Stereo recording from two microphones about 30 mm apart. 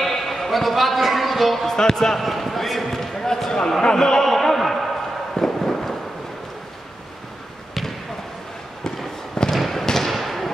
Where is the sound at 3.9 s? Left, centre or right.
Centre.